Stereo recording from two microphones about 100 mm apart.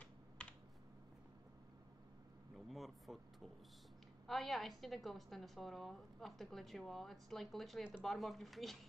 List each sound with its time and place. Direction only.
0.0 s typing: 10° left (ahead or behind)
2.7 s vehicle: centre (ahead or behind)
4.3 s a woman's voice: centre (ahead or behind)